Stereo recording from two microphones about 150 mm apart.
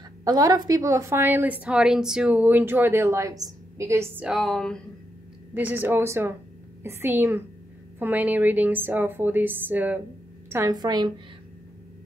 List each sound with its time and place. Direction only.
0.2 s a woman's voice: 25° right (ahead or behind)
4.3 s speech: centre (ahead or behind)
5.5 s a woman's voice: 10° right (ahead or behind)
10.5 s a woman's voice: 20° right (ahead or behind)